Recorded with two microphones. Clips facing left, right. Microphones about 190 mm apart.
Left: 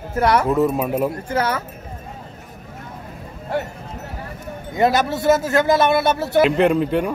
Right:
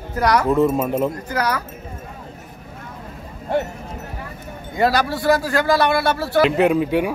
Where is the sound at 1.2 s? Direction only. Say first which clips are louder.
Left 1 dB; 25° left (ahead or behind).